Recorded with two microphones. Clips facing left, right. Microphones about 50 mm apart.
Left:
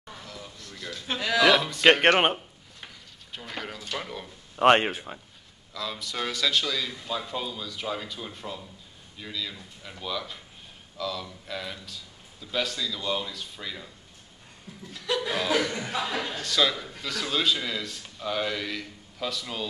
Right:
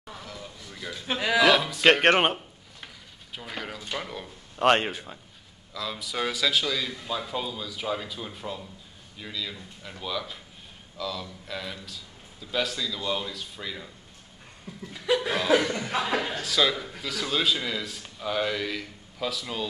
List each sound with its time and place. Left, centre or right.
0.0 s a sound: centre
1.4 s music: centre
3.3 s a sound: centre
4.0 s a man's voice: centre
4.6 s speech: centre
5.7 s a man's voice: centre
14.9 s laughter: centre
16.2 s a man's voice: centre